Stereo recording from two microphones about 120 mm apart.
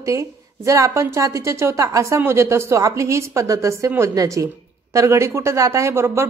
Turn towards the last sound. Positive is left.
turn(degrees=-20)  # may be behind; listen again after turning